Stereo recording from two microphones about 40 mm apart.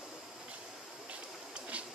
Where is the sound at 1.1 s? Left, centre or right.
Right.